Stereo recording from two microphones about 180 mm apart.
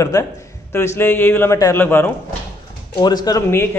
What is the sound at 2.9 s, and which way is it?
Speech, 25° left (ahead or behind).